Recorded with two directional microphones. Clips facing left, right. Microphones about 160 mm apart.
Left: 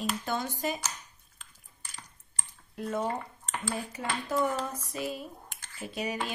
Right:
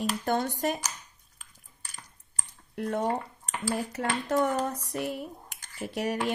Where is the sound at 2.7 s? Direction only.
65° right (ahead or behind).